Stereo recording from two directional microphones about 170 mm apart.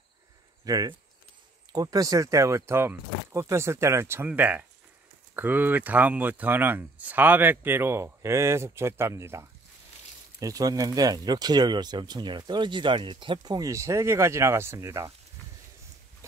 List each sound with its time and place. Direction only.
0.7 s speech: 20° right (ahead or behind)